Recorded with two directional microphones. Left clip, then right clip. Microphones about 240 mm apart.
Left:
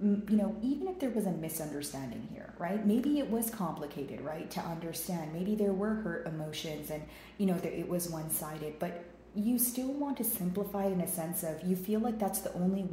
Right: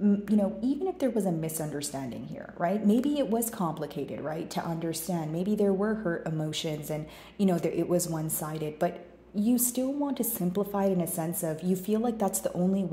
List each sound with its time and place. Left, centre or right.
0.4 s a woman's voice: right